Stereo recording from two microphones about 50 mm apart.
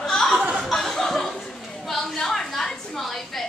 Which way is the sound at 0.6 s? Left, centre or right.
Centre.